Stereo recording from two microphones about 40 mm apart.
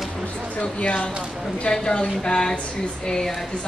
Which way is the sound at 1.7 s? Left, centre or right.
Centre.